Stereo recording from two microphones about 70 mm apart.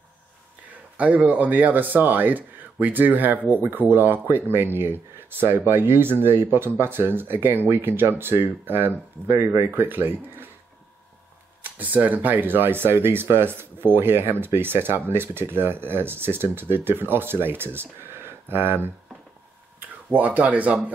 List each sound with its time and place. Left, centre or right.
0.9 s speech: centre
11.8 s speech: right